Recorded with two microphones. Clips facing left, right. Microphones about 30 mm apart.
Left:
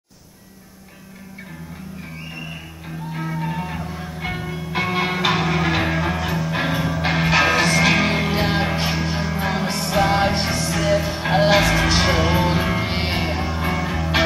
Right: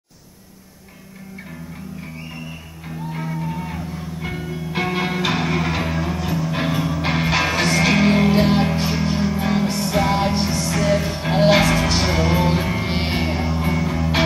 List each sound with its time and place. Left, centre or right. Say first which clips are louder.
3.1 s music: even; centre
3.3 s music: left 1 dB; left
4.6 s music: left 1 dB; centre
5.4 s music: left 2 dB; centre
8.6 s music: right 1 dB; left
8.9 s music: right 2 dB; centre
10.3 s music: right 1 dB; left
10.6 s music: even; centre